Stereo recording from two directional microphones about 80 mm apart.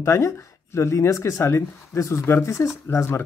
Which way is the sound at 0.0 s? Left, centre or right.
Left.